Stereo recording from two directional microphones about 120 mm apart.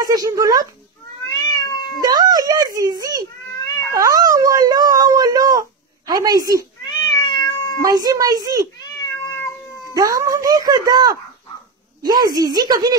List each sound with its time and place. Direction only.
0.0 s speech: 30° right (ahead or behind)
1.5 s cat: 35° left (ahead or behind)
2.0 s a child's voice: 30° right (ahead or behind)
3.4 s cat: 30° left (ahead or behind)
3.9 s a sound: 30° right (ahead or behind)
6.9 s cat: 35° left (ahead or behind)
7.8 s speech: 30° right (ahead or behind)
9.0 s cat: 25° left (ahead or behind)
9.9 s speech: 30° right (ahead or behind)